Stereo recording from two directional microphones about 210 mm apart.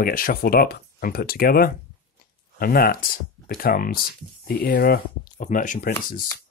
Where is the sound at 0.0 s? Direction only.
45° left (ahead or behind).